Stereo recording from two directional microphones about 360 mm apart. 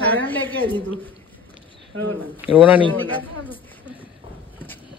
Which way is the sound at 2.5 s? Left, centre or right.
Centre.